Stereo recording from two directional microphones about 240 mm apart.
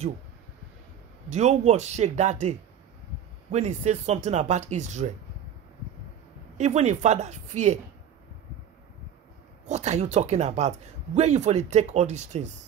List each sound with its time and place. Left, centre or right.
1.3 s speech: right
3.5 s speech: right
6.6 s speech: right
9.7 s speech: right